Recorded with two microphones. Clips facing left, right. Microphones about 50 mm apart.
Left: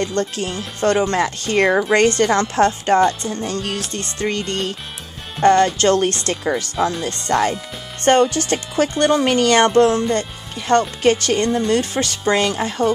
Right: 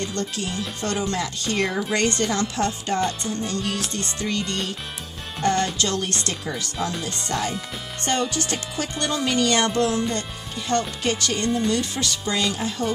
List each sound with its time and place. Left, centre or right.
0.0 s speech: left